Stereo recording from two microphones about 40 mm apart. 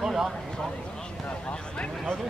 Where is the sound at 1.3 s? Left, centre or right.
Left.